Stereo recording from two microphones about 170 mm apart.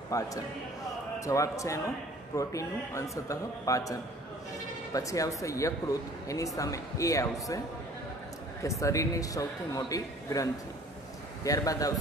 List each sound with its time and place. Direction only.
0.1 s a man's voice: 20° left (ahead or behind)
8.6 s a man's voice: 20° left (ahead or behind)